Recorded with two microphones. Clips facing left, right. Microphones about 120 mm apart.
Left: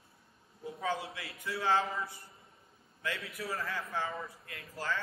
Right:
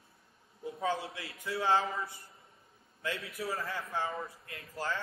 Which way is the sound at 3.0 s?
30° right (ahead or behind).